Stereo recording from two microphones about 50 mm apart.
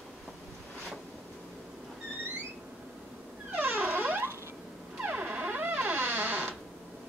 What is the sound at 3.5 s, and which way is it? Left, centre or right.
Music, right.